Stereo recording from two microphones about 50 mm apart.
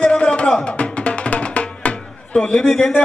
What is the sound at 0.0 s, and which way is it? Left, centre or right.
Music, left.